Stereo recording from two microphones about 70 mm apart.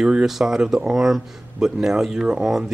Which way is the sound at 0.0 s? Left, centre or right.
Centre.